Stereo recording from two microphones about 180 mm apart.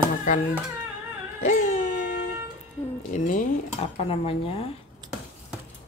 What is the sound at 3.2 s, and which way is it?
Speech, 40° left (ahead or behind).